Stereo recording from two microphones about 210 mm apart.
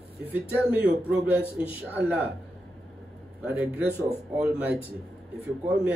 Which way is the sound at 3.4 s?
5° right (ahead or behind).